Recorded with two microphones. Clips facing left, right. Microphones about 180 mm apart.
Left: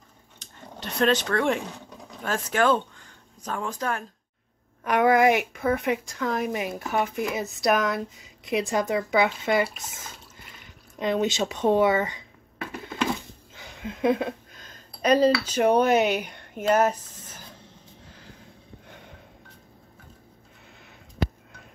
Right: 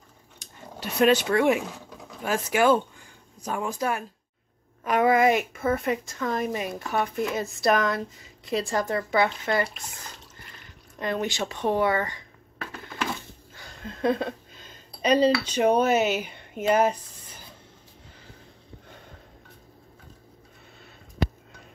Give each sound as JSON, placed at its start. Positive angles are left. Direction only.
{"t": 0.4, "sound": "a sound", "side_deg": -5}
{"t": 2.0, "sound": "speech", "side_deg": -10}
{"t": 8.7, "sound": "speech", "side_deg": 15}
{"t": 9.6, "sound": "speech", "side_deg": 5}
{"t": 11.0, "sound": "a sound", "side_deg": 20}
{"t": 15.0, "sound": "speech", "side_deg": 10}
{"t": 15.7, "sound": "speech", "side_deg": -5}